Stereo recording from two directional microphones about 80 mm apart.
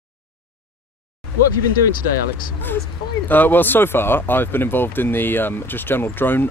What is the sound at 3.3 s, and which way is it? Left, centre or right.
Speech, left.